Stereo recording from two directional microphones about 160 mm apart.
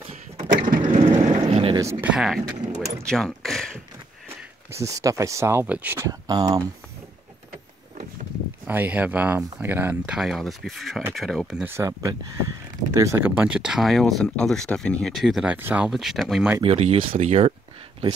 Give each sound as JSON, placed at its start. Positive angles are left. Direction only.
{"t": 0.5, "sound": "skateboard", "side_deg": -55}
{"t": 1.5, "sound": "a sound", "side_deg": -40}
{"t": 1.8, "sound": "speech", "side_deg": -15}
{"t": 4.6, "sound": "speech", "side_deg": -20}
{"t": 8.6, "sound": "speech", "side_deg": -10}
{"t": 11.6, "sound": "speech", "side_deg": -15}
{"t": 16.6, "sound": "speech", "side_deg": -40}